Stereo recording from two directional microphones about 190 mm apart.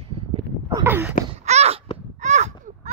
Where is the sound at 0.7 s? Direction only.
10° right (ahead or behind).